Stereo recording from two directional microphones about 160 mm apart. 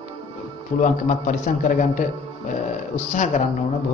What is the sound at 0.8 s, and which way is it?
Speech, 50° left (ahead or behind).